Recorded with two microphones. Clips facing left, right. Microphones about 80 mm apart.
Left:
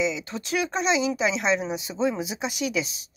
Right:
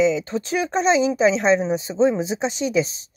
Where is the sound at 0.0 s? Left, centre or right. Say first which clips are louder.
Right 8 dB; right.